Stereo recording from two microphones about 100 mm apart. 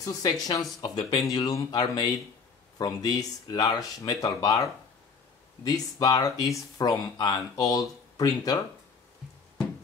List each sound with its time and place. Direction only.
0.0 s speech: 40° left (ahead or behind)